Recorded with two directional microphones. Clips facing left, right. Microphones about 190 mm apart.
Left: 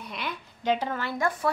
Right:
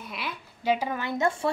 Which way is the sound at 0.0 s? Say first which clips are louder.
Left 1 dB; 5° right (ahead or behind).